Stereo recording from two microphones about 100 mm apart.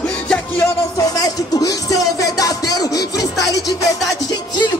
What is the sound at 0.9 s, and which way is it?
Music, 40° left (ahead or behind).